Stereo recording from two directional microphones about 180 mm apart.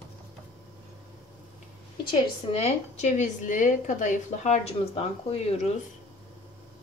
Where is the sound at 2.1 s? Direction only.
35° left (ahead or behind).